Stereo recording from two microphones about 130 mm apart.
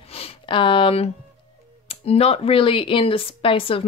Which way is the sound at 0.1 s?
45° left (ahead or behind).